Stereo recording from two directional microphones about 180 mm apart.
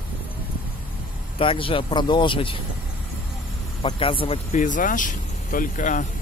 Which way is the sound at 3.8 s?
30° left (ahead or behind).